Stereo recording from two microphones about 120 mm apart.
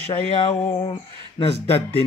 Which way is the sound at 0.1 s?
50° left (ahead or behind).